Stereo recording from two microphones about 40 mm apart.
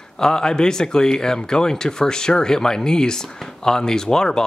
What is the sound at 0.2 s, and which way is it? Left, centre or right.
Speech, centre.